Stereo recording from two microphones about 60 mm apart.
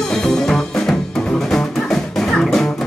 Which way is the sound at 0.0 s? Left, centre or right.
Centre.